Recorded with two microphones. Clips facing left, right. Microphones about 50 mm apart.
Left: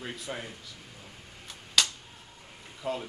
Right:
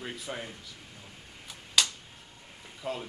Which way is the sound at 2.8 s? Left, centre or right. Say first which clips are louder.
Left 2 dB; centre.